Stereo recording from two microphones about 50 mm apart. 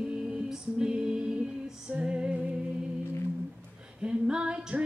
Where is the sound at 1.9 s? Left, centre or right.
Right.